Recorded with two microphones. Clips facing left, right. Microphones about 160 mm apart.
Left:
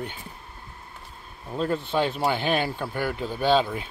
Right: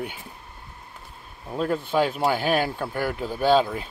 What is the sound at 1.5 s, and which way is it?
Speech, 5° right (ahead or behind).